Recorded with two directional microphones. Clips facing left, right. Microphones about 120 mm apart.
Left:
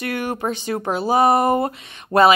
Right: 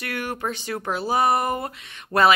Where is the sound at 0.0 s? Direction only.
20° left (ahead or behind).